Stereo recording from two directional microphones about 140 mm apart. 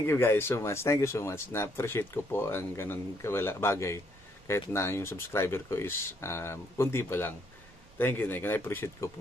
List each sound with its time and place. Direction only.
0.0 s speech: 15° left (ahead or behind)